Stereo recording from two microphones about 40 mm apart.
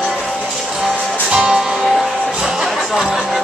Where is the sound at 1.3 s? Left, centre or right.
Centre.